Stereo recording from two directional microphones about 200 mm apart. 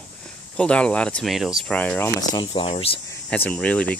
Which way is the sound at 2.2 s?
25° left (ahead or behind).